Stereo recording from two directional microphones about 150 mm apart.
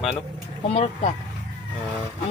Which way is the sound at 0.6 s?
45° left (ahead or behind).